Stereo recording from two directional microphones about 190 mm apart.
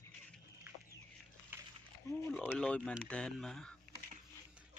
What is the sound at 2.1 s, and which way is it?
Speech, 15° left (ahead or behind).